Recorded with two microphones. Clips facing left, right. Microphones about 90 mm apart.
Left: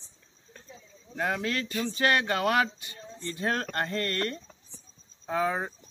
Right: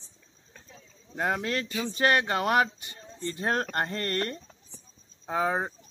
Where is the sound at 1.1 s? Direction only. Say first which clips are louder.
Right 1 dB; 30° right (ahead or behind).